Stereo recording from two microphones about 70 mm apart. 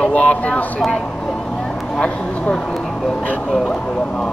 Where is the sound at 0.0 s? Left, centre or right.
Centre.